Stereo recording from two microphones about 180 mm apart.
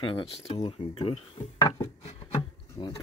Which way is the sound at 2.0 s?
35° left (ahead or behind).